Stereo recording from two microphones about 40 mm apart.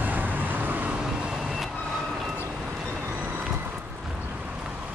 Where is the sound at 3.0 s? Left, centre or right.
Right.